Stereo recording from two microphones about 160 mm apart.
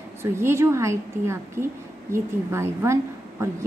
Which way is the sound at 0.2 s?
15° right (ahead or behind).